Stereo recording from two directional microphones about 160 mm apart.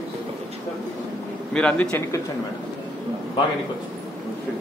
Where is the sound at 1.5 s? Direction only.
5° left (ahead or behind).